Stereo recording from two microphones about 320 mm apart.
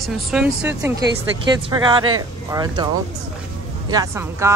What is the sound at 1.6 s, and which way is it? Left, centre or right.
Speech, centre.